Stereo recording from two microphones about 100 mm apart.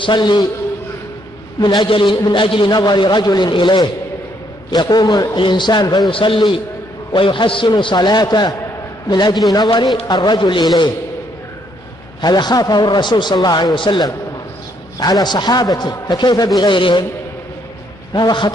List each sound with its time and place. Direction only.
0.0 s a man's voice: 50° left (ahead or behind)
1.6 s a man's voice: 45° left (ahead or behind)
12.2 s a man's voice: 45° left (ahead or behind)
18.1 s a man's voice: 50° left (ahead or behind)